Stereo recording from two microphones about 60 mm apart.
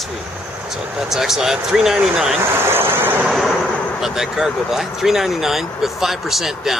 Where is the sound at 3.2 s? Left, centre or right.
Centre.